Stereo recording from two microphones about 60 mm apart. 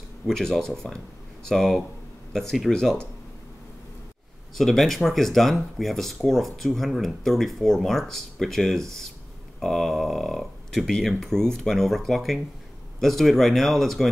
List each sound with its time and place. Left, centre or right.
0.3 s speech: centre
4.6 s speech: centre